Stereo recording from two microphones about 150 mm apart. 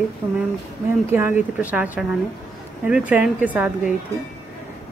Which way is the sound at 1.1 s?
15° right (ahead or behind).